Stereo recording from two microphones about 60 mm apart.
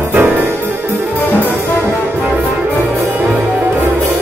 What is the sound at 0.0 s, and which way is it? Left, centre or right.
Music, right.